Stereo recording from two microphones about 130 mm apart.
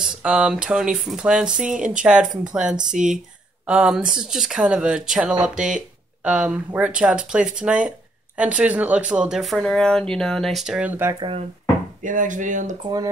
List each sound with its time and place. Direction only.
0.0 s speech: 5° right (ahead or behind)
11.1 s speech: 40° right (ahead or behind)
12.0 s speech: 85° right